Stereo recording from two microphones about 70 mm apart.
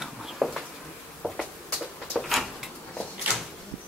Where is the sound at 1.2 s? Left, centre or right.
Left.